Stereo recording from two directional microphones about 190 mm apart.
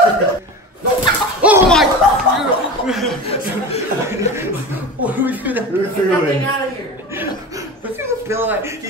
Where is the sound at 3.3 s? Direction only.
30° left (ahead or behind).